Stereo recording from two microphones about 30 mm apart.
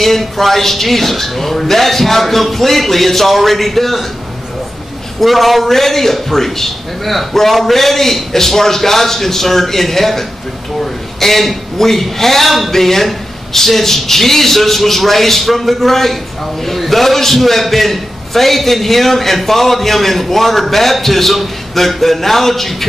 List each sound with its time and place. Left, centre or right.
0.0 s a man's voice: centre
5.2 s a man's voice: centre